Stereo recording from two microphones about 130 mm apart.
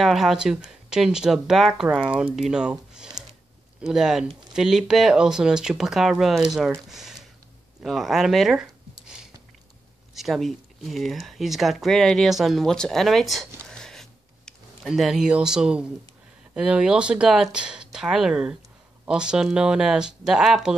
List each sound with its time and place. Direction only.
0.0 s speech: centre (ahead or behind)
10.1 s speech: centre (ahead or behind)